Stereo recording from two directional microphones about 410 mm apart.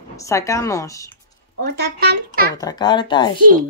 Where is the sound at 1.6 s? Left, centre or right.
Right.